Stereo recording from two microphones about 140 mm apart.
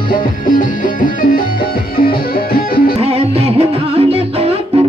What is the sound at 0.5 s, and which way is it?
Music, 70° left (ahead or behind).